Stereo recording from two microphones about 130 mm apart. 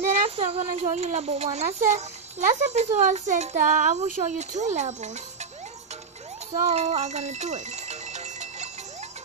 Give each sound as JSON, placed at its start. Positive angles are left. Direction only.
{"t": 0.1, "sound": "a sound", "side_deg": -50}
{"t": 0.9, "sound": "a child's voice", "side_deg": -55}
{"t": 6.6, "sound": "music", "side_deg": -55}